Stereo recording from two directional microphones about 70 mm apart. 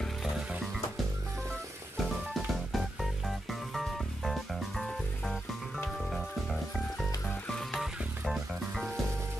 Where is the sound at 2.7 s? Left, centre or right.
Centre.